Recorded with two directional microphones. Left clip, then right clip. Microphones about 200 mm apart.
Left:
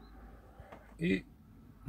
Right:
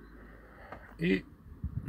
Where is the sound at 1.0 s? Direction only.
Centre (ahead or behind).